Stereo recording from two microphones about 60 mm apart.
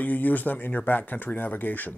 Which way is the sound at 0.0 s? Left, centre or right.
Left.